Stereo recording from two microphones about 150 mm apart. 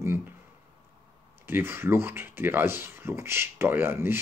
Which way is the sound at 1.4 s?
15° right (ahead or behind).